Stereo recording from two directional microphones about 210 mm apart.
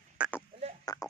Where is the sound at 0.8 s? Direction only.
15° left (ahead or behind).